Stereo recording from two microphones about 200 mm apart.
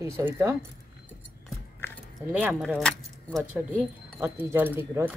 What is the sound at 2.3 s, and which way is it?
Speech, 5° right (ahead or behind).